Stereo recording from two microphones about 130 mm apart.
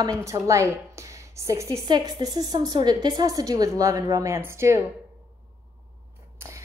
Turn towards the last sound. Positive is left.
turn(degrees=-20)  # may be behind; listen again after turning